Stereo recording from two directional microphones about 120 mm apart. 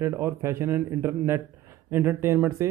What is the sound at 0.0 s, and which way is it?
A man's voice, 20° right (ahead or behind).